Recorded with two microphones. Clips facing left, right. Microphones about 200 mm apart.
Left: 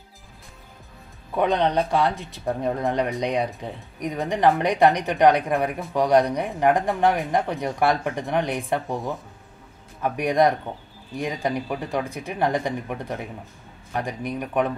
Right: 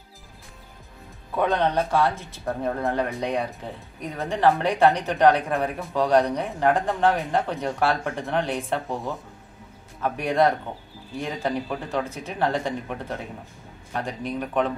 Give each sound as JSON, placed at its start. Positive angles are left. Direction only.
{"t": 1.3, "sound": "speech", "side_deg": 15}